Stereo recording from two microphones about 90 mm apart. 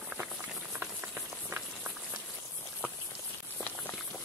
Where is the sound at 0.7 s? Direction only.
30° right (ahead or behind).